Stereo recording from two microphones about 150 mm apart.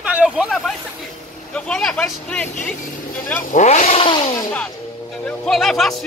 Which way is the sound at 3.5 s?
55° left (ahead or behind).